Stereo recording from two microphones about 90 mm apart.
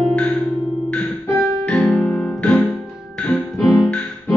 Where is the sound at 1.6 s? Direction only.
10° left (ahead or behind).